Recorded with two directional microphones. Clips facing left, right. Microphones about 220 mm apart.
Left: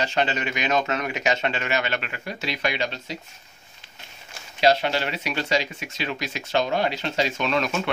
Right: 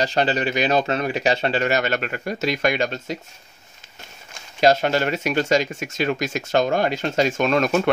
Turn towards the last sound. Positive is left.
turn(degrees=-45)  # may be behind; listen again after turning